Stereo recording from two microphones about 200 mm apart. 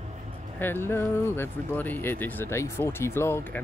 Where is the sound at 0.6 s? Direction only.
10° left (ahead or behind).